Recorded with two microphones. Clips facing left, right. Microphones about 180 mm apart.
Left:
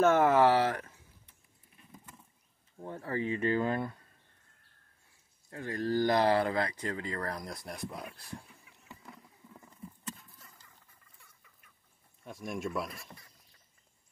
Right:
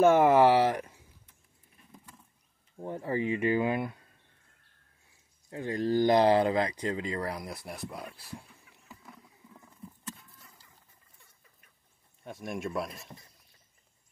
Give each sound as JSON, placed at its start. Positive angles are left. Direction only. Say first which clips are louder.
{"t": 0.0, "sound": "speech", "louder": "right 3 dB", "side_deg": -10}
{"t": 2.8, "sound": "speech", "louder": "right 4 dB", "side_deg": -15}
{"t": 5.5, "sound": "speech", "louder": "right 3 dB", "side_deg": -20}
{"t": 12.3, "sound": "speech", "louder": "right 1 dB", "side_deg": 0}
{"t": 12.8, "sound": "speech", "louder": "right 2 dB", "side_deg": -20}